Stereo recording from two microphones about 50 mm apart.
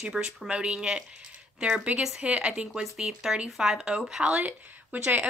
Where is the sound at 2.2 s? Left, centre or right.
Right.